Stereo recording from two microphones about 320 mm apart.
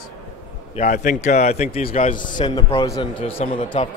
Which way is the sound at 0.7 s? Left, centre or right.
Left.